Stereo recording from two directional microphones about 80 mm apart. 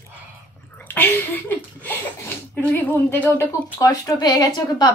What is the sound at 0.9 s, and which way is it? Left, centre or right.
Speech, left.